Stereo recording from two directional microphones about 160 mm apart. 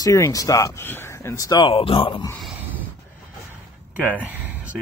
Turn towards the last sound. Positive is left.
turn(degrees=-10)  # may be behind; listen again after turning